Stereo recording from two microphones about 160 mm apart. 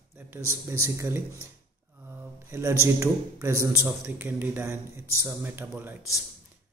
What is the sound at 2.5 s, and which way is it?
A man's voice, 15° right (ahead or behind).